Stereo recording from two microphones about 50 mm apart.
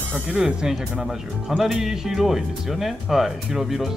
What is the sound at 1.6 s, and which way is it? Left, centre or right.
Speech, centre.